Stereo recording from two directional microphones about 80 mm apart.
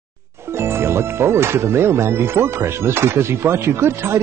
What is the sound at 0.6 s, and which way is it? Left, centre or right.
Speech, right.